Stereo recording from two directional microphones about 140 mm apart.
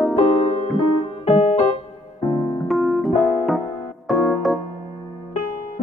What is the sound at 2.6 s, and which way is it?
Keyboard, centre (ahead or behind).